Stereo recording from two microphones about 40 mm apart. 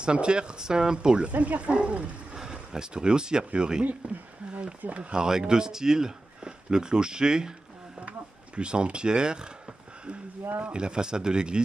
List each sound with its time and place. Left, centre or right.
0.0 s speech: right
2.3 s speech: centre
4.0 s speech: right
5.1 s speech: centre
8.5 s speech: right